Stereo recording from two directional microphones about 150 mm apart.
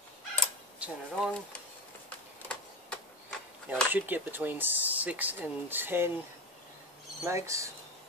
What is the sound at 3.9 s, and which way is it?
Speech, 15° right (ahead or behind).